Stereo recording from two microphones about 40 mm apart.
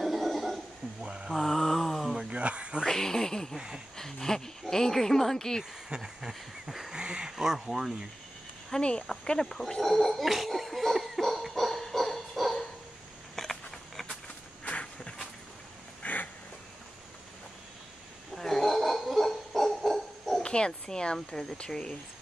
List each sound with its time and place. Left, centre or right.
0.0 s a sound: centre
1.0 s mantra: right
1.4 s mantra: centre
2.1 s a sound: right
2.9 s speech: centre
3.5 s speech: centre
3.9 s speech: centre
5.6 s a sound: centre
9.0 s gargling: centre
13.4 s a sound: centre
14.6 s walk: left
16.0 s duck: left
18.3 s dog: centre
20.4 s speech: left